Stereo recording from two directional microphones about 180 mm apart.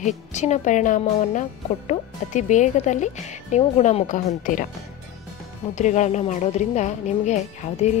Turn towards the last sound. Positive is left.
turn(degrees=40)  # may be behind; listen again after turning